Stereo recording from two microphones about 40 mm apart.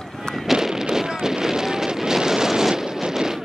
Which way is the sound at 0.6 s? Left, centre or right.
Centre.